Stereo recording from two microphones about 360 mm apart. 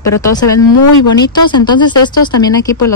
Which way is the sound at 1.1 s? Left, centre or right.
Centre.